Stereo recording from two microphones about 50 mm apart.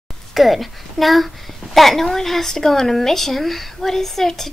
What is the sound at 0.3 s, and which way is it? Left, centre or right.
A child's voice, centre.